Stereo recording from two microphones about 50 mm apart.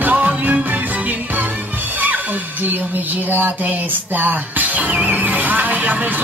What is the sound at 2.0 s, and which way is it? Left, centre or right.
Speech, right.